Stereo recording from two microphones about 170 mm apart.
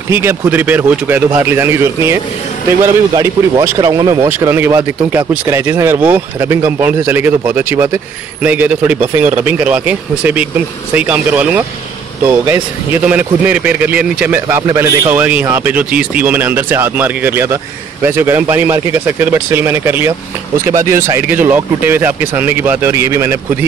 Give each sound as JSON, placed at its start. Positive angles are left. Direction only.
{"t": 0.1, "sound": "a man's voice", "side_deg": -15}
{"t": 13.1, "sound": "a man's voice", "side_deg": -10}